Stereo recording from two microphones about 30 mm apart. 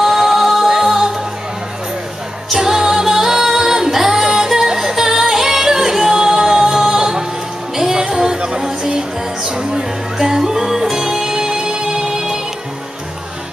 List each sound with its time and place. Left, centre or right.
0.0 s music: centre
2.5 s music: centre